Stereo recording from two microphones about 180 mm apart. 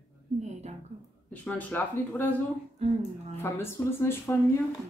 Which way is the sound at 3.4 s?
15° left (ahead or behind).